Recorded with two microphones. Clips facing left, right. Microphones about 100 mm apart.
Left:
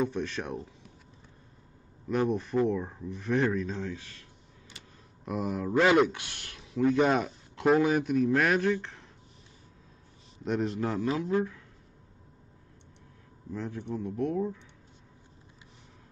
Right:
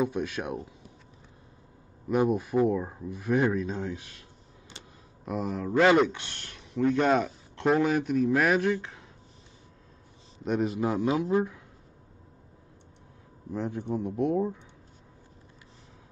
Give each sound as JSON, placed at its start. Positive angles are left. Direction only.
{"t": 0.0, "sound": "speech", "side_deg": -10}
{"t": 2.0, "sound": "speech", "side_deg": -10}
{"t": 5.2, "sound": "speech", "side_deg": 0}
{"t": 10.4, "sound": "speech", "side_deg": -5}
{"t": 13.5, "sound": "speech", "side_deg": -20}